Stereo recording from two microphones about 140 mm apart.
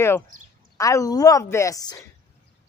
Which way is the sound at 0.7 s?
25° left (ahead or behind).